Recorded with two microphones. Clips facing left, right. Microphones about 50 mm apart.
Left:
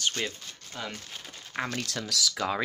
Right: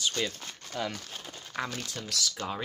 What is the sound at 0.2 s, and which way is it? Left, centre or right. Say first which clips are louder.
Speech: right 1 dB; left.